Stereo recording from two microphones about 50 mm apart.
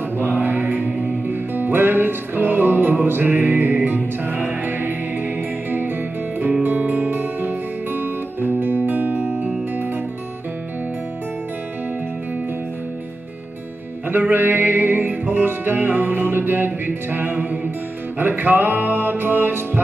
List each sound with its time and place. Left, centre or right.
0.2 s music: right
14.0 s music: right